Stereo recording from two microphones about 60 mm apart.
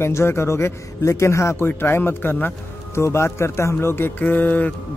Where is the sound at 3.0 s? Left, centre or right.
Left.